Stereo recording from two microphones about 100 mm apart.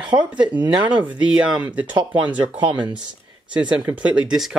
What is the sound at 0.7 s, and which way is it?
Speech, 55° right (ahead or behind).